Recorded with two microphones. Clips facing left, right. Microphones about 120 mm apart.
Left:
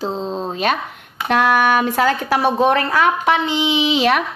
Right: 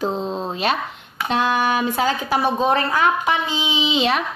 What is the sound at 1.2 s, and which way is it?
A woman's voice, 65° left (ahead or behind).